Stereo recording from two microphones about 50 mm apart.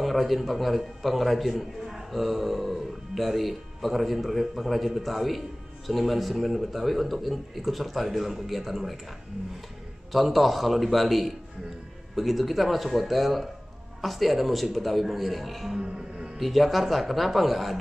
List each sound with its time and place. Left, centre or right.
0.0 s a man's voice: centre
10.1 s a man's voice: centre
15.8 s speech: centre
16.3 s a man's voice: centre